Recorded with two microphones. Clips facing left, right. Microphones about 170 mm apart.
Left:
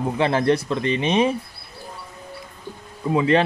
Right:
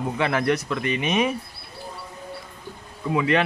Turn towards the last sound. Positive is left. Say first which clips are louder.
# left 3 dB
turn(degrees=30)  # may be behind; listen again after turning